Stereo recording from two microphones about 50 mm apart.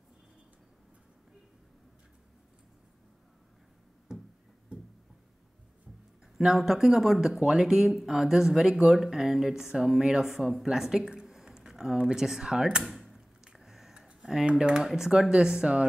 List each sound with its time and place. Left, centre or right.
6.3 s speech: centre
12.8 s a sound: centre
13.9 s tick-tock: centre
14.4 s speech: centre